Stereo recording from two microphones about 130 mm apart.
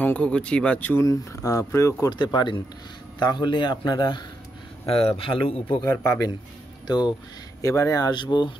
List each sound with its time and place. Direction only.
0.0 s a man's voice: 10° left (ahead or behind); by 4.2 s 35° left (ahead or behind)
4.8 s a man's voice: 45° left (ahead or behind)
7.6 s a man's voice: 25° left (ahead or behind)